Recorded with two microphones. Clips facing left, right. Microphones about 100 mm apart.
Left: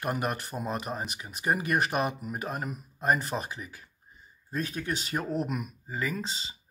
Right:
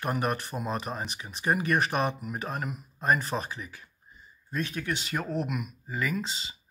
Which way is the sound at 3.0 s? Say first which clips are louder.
Right 1 dB; 35° right (ahead or behind).